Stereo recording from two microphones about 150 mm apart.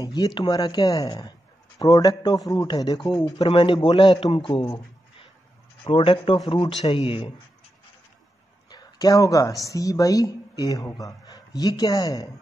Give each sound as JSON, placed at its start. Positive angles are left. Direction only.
{"t": 0.0, "sound": "speech", "side_deg": 25}
{"t": 3.3, "sound": "a man's voice", "side_deg": 40}
{"t": 5.9, "sound": "a man's voice", "side_deg": 40}
{"t": 8.6, "sound": "a woman's voice", "side_deg": 25}